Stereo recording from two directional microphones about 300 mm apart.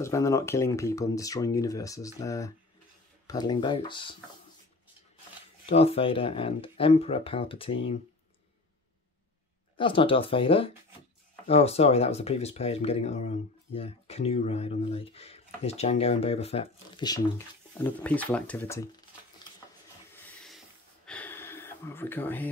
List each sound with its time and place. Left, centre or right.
0.0 s speech: centre
5.7 s speech: centre
9.8 s speech: centre
20.2 s a sound: centre